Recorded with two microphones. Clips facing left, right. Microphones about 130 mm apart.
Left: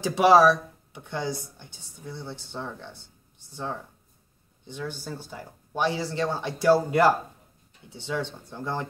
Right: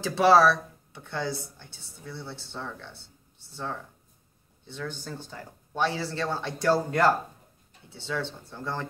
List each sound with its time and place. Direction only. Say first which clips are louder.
0.0 s speech: left 2 dB; 15° left (ahead or behind)